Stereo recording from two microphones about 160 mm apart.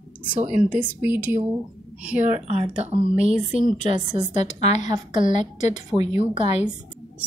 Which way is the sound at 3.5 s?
45° left (ahead or behind).